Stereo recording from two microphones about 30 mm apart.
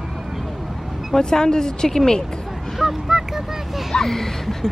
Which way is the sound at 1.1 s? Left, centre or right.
Left.